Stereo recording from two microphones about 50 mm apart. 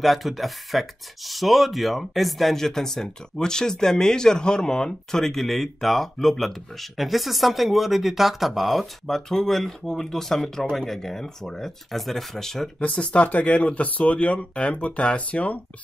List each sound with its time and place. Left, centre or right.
0.0 s speech: centre
12.8 s speech: left